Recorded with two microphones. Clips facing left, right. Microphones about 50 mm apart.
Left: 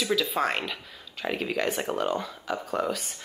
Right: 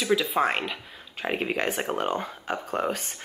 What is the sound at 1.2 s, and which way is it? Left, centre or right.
Speech, right.